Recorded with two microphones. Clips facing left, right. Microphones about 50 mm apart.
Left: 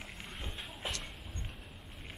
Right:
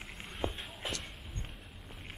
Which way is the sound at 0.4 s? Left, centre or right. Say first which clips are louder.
Right 13 dB; right.